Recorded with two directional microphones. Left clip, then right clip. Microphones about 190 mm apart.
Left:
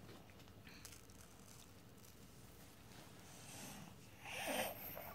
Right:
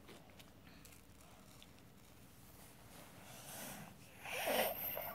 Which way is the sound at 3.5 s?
45° right (ahead or behind).